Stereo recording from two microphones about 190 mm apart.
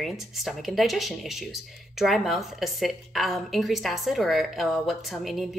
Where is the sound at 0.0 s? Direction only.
Centre (ahead or behind).